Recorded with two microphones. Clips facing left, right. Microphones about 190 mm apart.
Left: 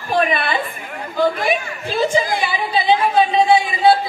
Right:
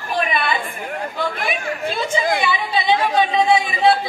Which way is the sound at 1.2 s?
35° left (ahead or behind).